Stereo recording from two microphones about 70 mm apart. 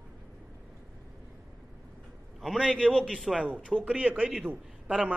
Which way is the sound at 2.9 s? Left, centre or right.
Centre.